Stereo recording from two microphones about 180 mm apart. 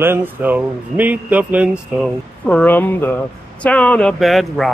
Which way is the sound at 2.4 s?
10° left (ahead or behind).